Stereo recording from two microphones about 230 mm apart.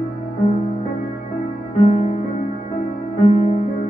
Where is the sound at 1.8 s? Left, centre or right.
Left.